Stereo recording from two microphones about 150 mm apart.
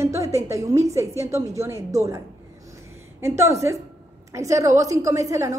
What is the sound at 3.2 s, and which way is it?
A woman's voice, 20° right (ahead or behind).